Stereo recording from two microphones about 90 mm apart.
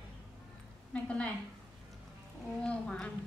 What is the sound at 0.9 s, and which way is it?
Speech, 10° left (ahead or behind).